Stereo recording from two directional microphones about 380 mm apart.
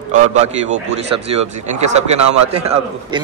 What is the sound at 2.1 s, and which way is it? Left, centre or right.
Speech, right.